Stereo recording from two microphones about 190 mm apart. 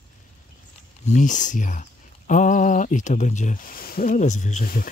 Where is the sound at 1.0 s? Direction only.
40° left (ahead or behind).